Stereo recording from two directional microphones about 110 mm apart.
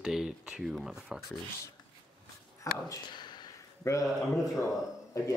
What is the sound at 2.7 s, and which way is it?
Speech, 30° left (ahead or behind).